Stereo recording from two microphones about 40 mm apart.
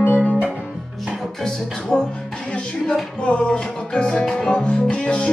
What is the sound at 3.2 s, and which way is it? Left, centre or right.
Music, left.